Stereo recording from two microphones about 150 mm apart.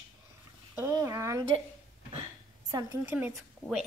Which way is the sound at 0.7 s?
20° right (ahead or behind).